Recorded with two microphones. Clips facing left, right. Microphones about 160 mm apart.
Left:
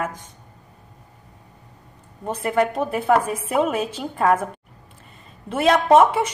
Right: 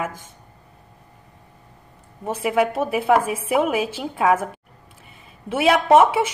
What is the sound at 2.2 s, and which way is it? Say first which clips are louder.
A woman's voice: right 1 dB; 5° right (ahead or behind).